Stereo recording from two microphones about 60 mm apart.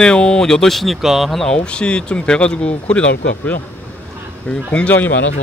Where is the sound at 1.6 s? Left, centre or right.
Centre.